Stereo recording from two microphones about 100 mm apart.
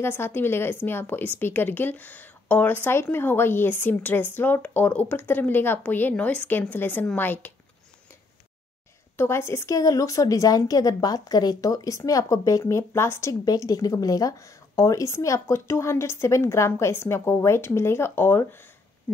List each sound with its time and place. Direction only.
0.0 s speech: 25° left (ahead or behind)
9.1 s a woman's voice: 25° left (ahead or behind)